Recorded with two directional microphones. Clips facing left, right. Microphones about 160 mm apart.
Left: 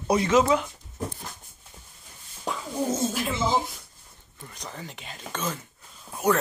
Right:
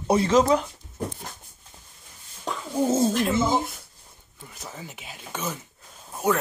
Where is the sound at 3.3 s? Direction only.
50° right (ahead or behind).